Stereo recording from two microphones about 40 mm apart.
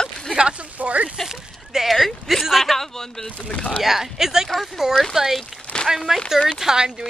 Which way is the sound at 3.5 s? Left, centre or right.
Left.